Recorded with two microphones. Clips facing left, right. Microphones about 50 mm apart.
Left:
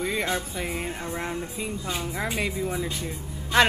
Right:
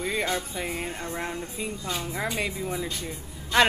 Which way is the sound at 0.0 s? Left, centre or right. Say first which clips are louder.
Left 1 dB; centre.